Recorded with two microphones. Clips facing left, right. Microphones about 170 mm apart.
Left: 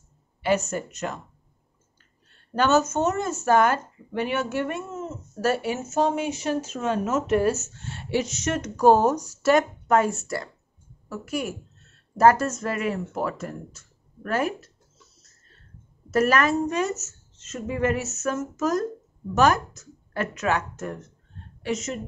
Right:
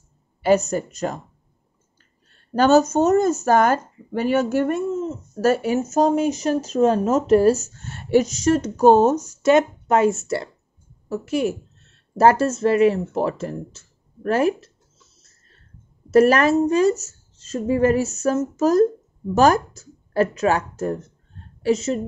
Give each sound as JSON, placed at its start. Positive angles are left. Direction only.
{"t": 0.4, "sound": "speech", "side_deg": -40}
{"t": 2.5, "sound": "speech", "side_deg": -35}
{"t": 16.1, "sound": "speech", "side_deg": -30}